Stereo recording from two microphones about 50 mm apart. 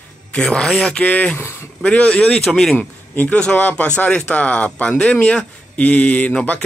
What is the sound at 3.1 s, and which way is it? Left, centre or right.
A man's voice, left.